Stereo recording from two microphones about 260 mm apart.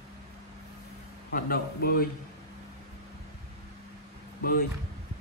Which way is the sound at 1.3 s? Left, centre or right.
Left.